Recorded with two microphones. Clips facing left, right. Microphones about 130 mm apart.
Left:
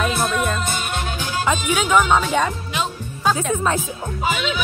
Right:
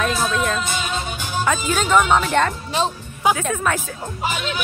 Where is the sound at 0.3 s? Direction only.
5° left (ahead or behind).